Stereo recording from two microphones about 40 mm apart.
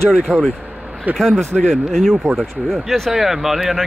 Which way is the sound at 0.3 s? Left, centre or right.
Left.